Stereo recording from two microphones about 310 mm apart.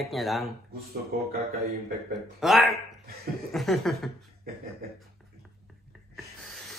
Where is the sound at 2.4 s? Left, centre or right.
Centre.